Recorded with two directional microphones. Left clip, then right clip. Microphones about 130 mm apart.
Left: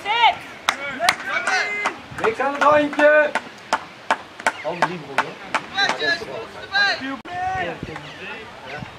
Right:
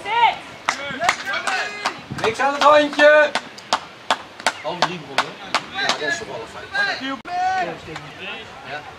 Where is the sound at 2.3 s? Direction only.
35° right (ahead or behind).